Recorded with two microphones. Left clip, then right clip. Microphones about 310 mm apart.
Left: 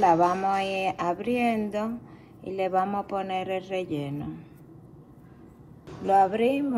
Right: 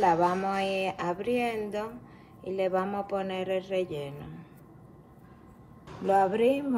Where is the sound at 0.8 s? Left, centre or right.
Centre.